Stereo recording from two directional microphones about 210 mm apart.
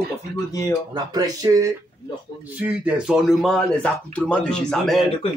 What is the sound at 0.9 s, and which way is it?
Speech, 15° right (ahead or behind).